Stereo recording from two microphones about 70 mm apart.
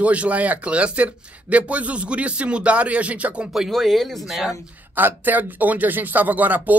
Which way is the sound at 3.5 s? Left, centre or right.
Centre.